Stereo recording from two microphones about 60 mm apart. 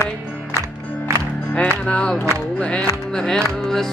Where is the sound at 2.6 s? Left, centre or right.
Centre.